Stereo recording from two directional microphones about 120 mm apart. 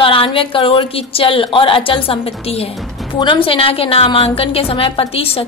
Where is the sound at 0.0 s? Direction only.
50° left (ahead or behind).